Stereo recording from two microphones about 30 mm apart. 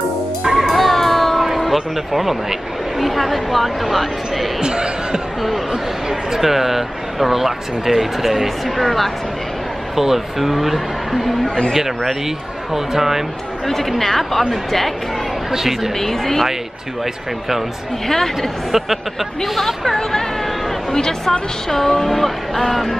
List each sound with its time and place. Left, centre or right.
0.6 s a sound: centre
1.6 s speech: centre
4.6 s speech: right
5.7 s speech: centre
9.9 s speech: centre
11.4 s a man's voice: left
12.7 s speech: centre
13.7 s speech: centre
15.5 s speech: centre
16.0 s speech: centre
18.0 s speech: centre
18.7 s speech: centre